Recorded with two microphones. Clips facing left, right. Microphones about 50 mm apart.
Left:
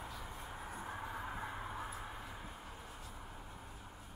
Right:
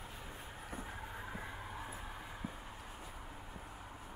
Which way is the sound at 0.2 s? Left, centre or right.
Centre.